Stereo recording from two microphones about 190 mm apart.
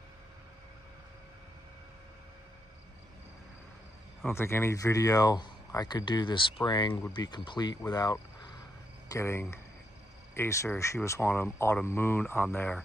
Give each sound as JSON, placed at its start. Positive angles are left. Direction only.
{"t": 4.3, "sound": "speech", "side_deg": 15}